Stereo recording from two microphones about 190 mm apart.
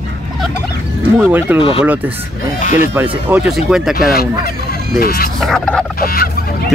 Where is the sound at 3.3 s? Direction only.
5° right (ahead or behind).